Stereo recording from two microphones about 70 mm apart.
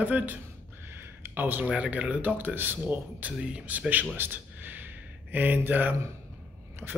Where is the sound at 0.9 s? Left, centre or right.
Right.